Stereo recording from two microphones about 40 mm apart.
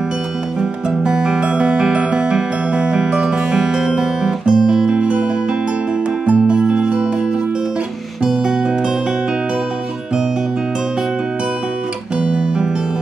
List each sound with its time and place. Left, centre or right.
0.6 s music: centre
8.2 s music: centre
12.3 s music: right